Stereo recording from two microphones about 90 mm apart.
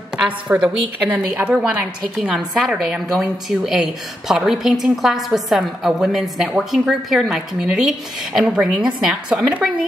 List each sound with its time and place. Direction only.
0.2 s a woman's voice: 10° right (ahead or behind)